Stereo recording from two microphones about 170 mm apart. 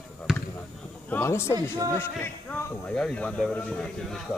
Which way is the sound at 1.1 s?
15° left (ahead or behind).